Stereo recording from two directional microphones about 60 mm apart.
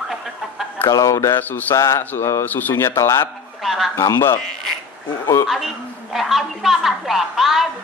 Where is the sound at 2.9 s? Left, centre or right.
Left.